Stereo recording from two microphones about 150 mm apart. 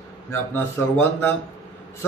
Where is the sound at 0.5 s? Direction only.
15° left (ahead or behind).